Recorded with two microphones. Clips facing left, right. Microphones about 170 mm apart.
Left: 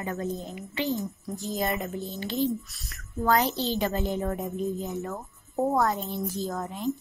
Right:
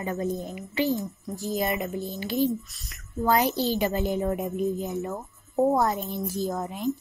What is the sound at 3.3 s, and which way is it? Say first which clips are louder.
A woman's voice: right 2 dB; 10° right (ahead or behind).